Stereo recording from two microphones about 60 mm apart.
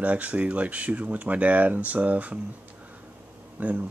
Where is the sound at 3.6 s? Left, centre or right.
Right.